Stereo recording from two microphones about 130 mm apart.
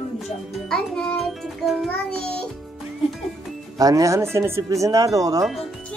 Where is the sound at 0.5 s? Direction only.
5° left (ahead or behind).